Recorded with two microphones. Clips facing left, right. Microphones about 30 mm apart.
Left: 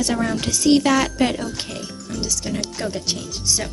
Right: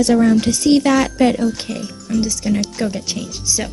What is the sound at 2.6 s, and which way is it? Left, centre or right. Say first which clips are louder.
Speech: right 5 dB; centre.